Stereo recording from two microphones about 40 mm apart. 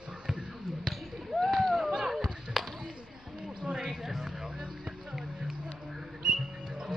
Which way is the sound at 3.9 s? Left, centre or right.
Centre.